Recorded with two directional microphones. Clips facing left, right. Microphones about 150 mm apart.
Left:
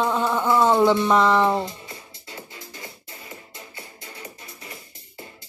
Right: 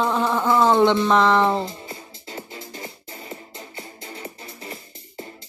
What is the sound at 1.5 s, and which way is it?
Music, 25° right (ahead or behind).